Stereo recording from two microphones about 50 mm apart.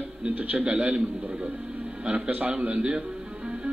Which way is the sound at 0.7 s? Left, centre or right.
Centre.